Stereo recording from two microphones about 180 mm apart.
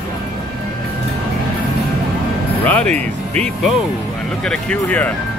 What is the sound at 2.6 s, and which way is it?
Music, 10° left (ahead or behind).